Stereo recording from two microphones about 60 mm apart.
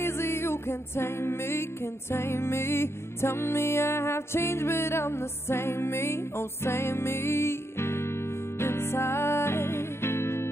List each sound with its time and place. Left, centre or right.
0.0 s music: left